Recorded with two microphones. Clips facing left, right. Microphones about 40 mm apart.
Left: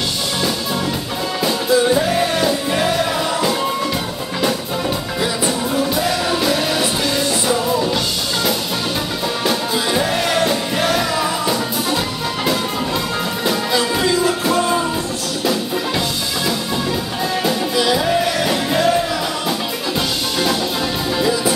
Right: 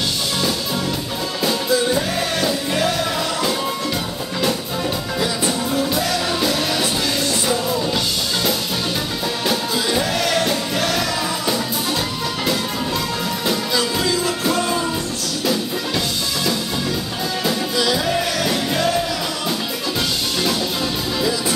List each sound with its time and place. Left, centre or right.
1.4 s music: centre
5.2 s music: centre
9.9 s music: centre
13.7 s music: centre
17.4 s music: centre
21.2 s music: centre